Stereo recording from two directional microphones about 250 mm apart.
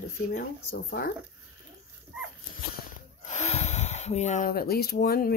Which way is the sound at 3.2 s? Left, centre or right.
Left.